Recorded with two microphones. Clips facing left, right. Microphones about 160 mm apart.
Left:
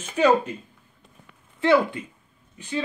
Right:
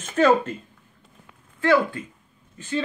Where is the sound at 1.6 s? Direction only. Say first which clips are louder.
Left 1 dB; 20° left (ahead or behind).